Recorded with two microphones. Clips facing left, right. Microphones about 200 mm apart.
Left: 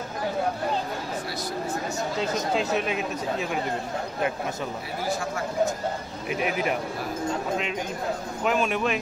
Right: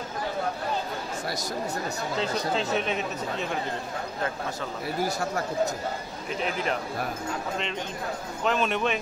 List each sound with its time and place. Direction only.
2.5 s speech: 5° left (ahead or behind)
5.0 s speech: 40° right (ahead or behind)
6.3 s a man's voice: 10° left (ahead or behind)
8.5 s speech: 5° left (ahead or behind)